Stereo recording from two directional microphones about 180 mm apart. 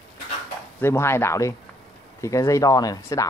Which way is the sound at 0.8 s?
15° left (ahead or behind).